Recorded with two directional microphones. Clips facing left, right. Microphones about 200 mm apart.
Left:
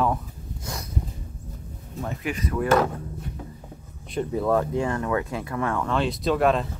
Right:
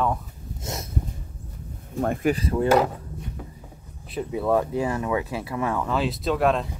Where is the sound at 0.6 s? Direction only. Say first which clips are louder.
Right 3 dB; 25° right (ahead or behind).